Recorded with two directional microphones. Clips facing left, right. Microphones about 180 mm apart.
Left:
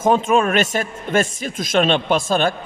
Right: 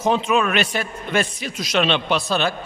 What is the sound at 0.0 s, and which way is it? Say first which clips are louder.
A man's voice: left 3 dB; 45° left (ahead or behind).